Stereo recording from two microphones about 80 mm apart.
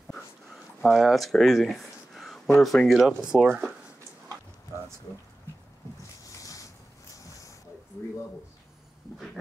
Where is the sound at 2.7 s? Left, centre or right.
Centre.